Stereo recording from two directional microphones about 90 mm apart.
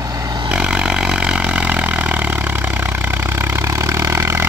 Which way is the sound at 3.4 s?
30° right (ahead or behind).